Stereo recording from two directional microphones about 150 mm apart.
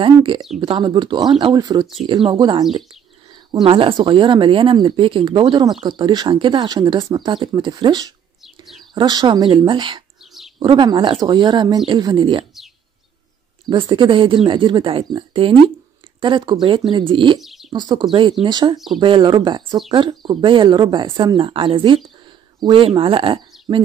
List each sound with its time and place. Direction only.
0.0 s speech: 35° right (ahead or behind)
13.7 s speech: 30° right (ahead or behind)
17.4 s bird: centre (ahead or behind)
17.7 s speech: 30° right (ahead or behind)